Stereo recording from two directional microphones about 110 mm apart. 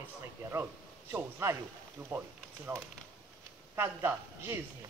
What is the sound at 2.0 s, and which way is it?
Speech, 15° right (ahead or behind).